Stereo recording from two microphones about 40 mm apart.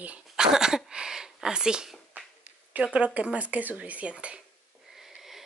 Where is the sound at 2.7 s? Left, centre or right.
Right.